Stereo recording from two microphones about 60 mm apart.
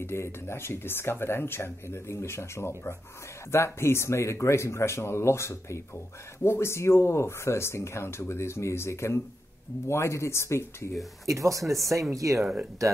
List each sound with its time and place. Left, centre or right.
0.0 s speech: left
11.2 s speech: right